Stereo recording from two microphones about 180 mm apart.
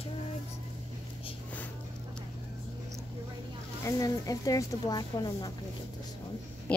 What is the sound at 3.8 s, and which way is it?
Speech, 20° left (ahead or behind).